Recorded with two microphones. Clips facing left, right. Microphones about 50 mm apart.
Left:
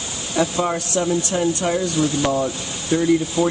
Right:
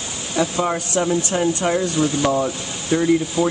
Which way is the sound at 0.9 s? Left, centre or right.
Right.